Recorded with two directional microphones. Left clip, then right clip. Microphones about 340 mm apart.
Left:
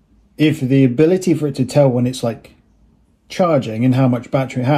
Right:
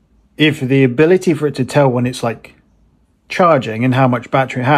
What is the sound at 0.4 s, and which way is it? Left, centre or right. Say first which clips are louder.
Speech: right 2 dB; right.